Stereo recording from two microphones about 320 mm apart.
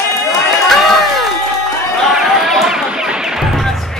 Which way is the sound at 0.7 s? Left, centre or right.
Centre.